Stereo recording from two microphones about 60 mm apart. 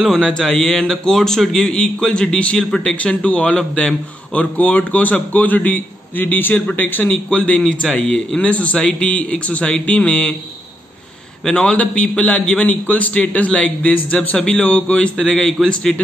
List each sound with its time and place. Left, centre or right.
0.0 s a man's voice: centre; by 7.6 s left
7.8 s a man's voice: centre
8.4 s a man's voice: left
11.4 s a man's voice: centre